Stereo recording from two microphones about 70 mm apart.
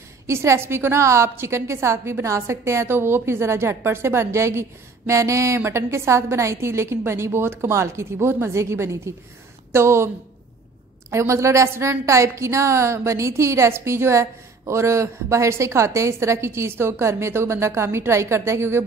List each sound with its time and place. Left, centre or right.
0.3 s a woman's voice: right
11.1 s a woman's voice: right